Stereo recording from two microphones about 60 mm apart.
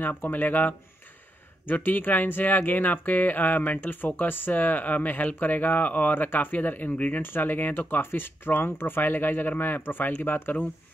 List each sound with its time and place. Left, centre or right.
0.0 s speech: left